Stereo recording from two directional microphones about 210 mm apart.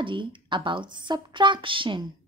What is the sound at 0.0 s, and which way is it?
A woman's voice, 25° right (ahead or behind).